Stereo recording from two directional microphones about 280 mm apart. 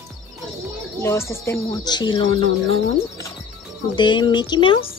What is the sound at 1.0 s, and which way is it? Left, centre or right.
Speech, centre.